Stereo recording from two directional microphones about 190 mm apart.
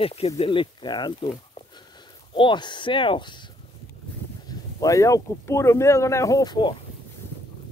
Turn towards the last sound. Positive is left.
turn(degrees=20)  # may be behind; listen again after turning